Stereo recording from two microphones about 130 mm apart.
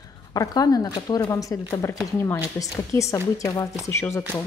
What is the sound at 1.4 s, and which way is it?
A woman's voice, 25° left (ahead or behind).